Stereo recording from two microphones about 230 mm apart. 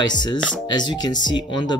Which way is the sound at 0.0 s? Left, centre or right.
Centre.